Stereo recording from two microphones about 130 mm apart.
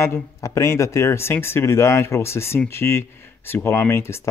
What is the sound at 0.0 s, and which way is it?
Speech, 20° left (ahead or behind).